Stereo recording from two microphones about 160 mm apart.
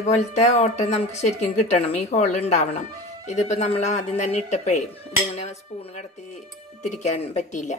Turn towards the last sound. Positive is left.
turn(degrees=50)  # may be behind; listen again after turning